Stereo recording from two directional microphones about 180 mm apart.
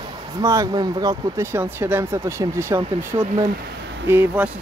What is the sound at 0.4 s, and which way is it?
Speech, 20° right (ahead or behind).